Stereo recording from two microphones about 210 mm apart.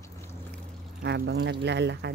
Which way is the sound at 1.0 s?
50° right (ahead or behind).